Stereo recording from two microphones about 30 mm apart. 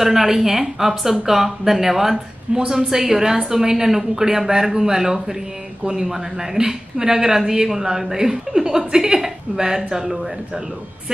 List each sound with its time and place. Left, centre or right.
0.0 s a woman's voice: centre
2.5 s a woman's voice: right
2.9 s a woman's voice: centre